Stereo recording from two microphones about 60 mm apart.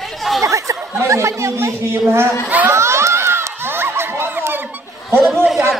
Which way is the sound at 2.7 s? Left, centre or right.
Right.